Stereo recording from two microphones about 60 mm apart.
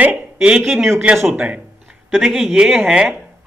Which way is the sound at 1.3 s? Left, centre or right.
Right.